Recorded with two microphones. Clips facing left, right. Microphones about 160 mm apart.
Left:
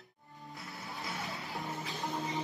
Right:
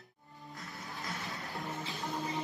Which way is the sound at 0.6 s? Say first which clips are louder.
Left 1 dB; centre (ahead or behind).